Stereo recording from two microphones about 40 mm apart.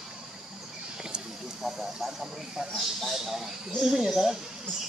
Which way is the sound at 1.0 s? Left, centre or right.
Centre.